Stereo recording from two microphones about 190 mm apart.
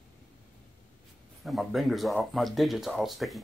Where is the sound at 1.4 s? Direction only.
Centre (ahead or behind).